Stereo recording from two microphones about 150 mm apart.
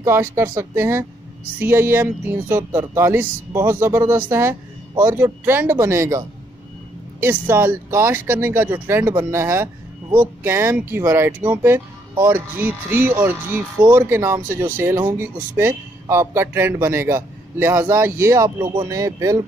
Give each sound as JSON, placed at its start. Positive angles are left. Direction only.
{"t": 0.0, "sound": "speech", "side_deg": -15}